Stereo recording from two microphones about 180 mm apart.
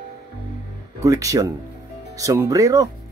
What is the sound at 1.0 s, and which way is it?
Speech, 20° right (ahead or behind).